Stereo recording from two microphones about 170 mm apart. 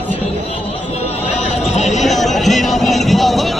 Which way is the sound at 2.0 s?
Centre (ahead or behind).